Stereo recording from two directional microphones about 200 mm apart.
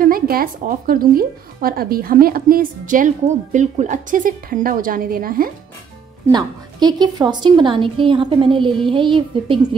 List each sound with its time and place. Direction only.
0.0 s a woman's voice: 45° right (ahead or behind)
6.3 s a woman's voice: 20° right (ahead or behind)